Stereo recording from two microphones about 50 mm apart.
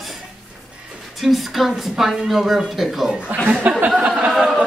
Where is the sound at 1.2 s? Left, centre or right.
Centre.